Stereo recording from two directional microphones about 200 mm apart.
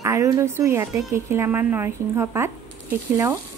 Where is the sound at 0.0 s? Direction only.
15° right (ahead or behind).